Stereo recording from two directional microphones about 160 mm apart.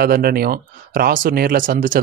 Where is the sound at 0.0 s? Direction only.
70° right (ahead or behind).